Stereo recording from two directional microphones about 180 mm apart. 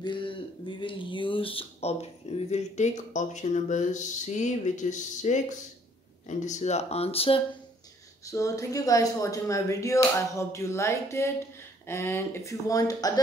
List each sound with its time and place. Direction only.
0.0 s speech: 25° left (ahead or behind)
8.3 s speech: 20° left (ahead or behind)